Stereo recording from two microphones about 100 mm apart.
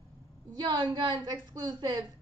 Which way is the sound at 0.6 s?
45° right (ahead or behind).